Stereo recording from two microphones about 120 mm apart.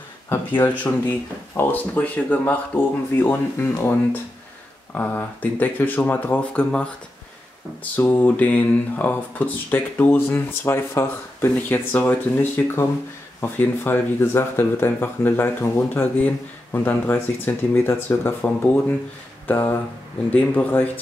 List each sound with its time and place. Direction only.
0.6 s speech: 15° left (ahead or behind)
19.4 s a sound: 15° left (ahead or behind)
20.2 s speech: 15° left (ahead or behind)